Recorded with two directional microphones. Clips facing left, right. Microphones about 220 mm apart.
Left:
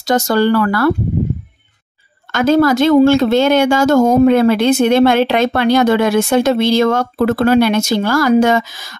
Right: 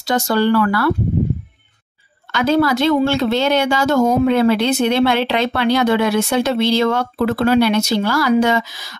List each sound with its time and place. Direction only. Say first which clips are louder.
0.0 s speech: left 3 dB; 45° left (ahead or behind)
2.3 s speech: left 4 dB; 45° left (ahead or behind)